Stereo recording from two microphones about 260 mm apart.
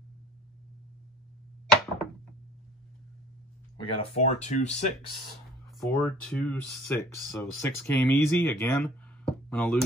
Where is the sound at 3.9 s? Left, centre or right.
Left.